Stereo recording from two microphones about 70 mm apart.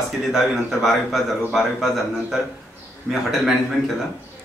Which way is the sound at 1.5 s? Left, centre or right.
Centre.